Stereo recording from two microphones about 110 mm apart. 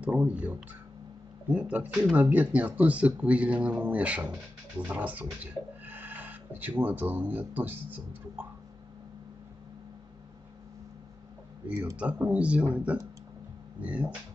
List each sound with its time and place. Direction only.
0.0 s speech: 10° right (ahead or behind)
11.6 s speech: 10° right (ahead or behind)